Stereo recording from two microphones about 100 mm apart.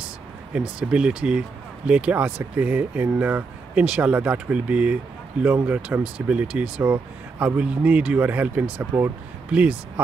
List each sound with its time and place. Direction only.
0.6 s speech: 10° right (ahead or behind)
9.5 s speech: 15° right (ahead or behind)